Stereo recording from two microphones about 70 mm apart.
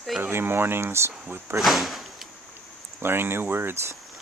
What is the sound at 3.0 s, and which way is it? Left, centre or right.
Speech, right.